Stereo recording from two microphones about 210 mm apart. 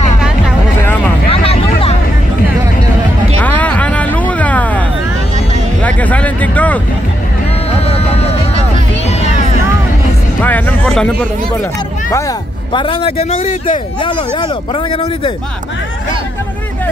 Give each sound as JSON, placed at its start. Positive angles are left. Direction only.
{"t": 0.8, "sound": "vehicle", "side_deg": 10}
{"t": 1.3, "sound": "a sound", "side_deg": 25}
{"t": 3.3, "sound": "music", "side_deg": 5}
{"t": 5.8, "sound": "a sound", "side_deg": 5}
{"t": 7.8, "sound": "music", "side_deg": 30}
{"t": 10.4, "sound": "music", "side_deg": 10}
{"t": 12.1, "sound": "speech", "side_deg": 15}